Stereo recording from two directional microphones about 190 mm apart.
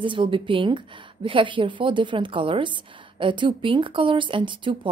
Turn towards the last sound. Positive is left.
turn(degrees=-25)  # may be behind; listen again after turning